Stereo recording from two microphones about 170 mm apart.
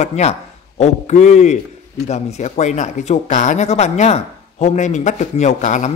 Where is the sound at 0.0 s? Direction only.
40° left (ahead or behind).